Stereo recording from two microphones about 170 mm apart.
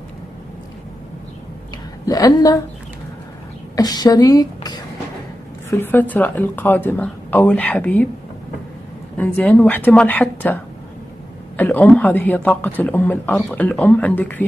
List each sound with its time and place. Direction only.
2.0 s a woman's voice: 20° left (ahead or behind)
3.7 s a woman's voice: 25° left (ahead or behind)
9.1 s a man's voice: 10° left (ahead or behind)